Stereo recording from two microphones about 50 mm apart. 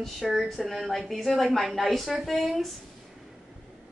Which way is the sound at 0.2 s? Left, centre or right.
Centre.